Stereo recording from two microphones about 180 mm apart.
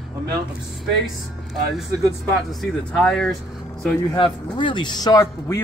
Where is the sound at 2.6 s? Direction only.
5° left (ahead or behind).